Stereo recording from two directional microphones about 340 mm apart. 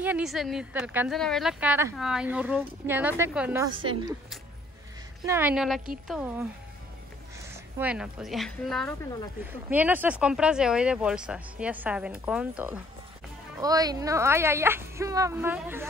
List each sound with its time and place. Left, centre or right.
0.0 s speech: centre
5.2 s a woman's voice: centre